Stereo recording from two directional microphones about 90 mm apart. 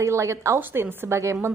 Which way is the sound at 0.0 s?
35° right (ahead or behind).